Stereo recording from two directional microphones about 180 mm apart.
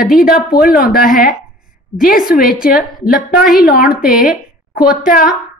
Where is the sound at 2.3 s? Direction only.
55° left (ahead or behind).